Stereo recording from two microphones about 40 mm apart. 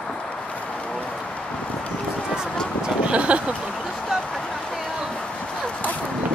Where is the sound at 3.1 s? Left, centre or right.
Right.